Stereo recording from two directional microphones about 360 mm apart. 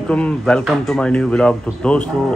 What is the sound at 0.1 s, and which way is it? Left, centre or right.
Speech, centre.